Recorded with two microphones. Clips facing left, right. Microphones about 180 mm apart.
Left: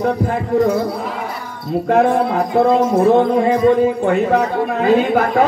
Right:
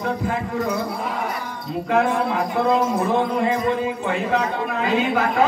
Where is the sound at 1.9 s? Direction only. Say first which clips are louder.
Left 6 dB; 45° left (ahead or behind).